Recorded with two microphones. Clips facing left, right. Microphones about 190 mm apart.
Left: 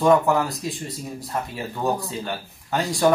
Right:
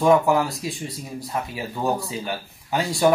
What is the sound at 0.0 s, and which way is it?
Speech, centre (ahead or behind).